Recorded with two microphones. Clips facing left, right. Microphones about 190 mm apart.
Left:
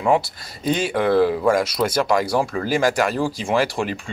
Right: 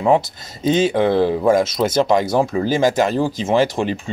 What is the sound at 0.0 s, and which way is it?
Speech, 20° right (ahead or behind).